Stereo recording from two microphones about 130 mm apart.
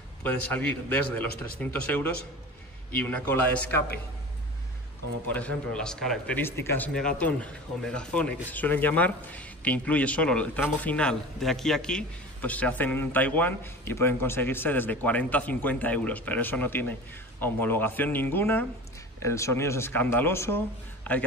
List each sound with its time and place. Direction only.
0.2 s speech: 10° left (ahead or behind)
5.3 s speech: 10° left (ahead or behind)
6.9 s speech: 5° left (ahead or behind)